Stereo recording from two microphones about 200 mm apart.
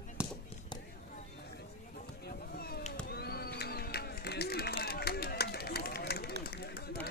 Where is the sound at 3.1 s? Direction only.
50° left (ahead or behind).